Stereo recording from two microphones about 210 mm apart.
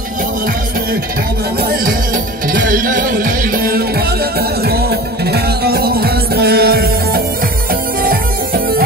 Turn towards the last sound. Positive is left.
turn(degrees=-45)  # may be behind; listen again after turning